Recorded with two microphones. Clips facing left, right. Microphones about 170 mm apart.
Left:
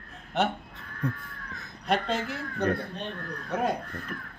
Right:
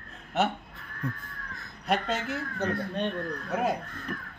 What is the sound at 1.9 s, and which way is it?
Speech, centre (ahead or behind).